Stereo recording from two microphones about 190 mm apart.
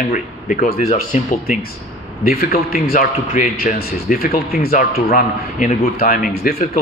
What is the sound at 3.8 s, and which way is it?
Speech, 55° left (ahead or behind).